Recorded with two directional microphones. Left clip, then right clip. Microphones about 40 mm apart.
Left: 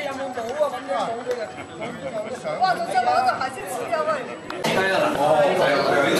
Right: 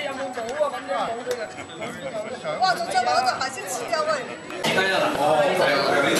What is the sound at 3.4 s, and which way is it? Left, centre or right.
Speech, right.